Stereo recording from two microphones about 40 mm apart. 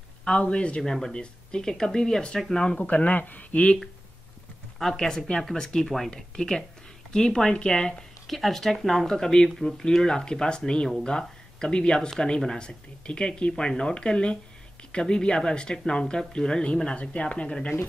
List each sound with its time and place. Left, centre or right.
0.2 s speech: left
2.8 s speech: left
4.7 s speech: centre
8.3 s speech: centre
8.7 s speech: centre
10.0 s speech: centre